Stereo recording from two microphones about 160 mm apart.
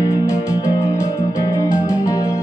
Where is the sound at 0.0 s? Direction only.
20° left (ahead or behind).